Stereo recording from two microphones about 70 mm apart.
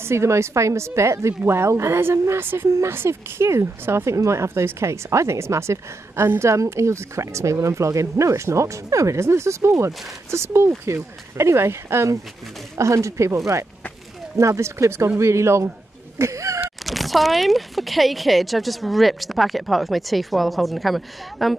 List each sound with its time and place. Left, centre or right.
0.0 s speech: right
16.2 s a sound: right
16.8 s speech: centre